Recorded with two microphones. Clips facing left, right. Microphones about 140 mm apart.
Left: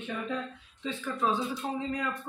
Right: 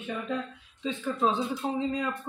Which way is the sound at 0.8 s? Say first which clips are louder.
Right 3 dB; 25° right (ahead or behind).